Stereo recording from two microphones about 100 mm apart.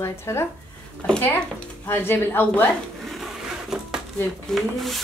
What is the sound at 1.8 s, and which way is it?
Speech, 20° left (ahead or behind).